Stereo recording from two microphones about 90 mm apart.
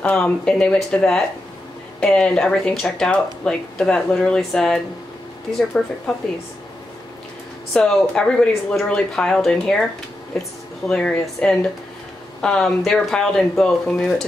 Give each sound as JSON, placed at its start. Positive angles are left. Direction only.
{"t": 0.0, "sound": "speech", "side_deg": 10}
{"t": 7.7, "sound": "speech", "side_deg": 10}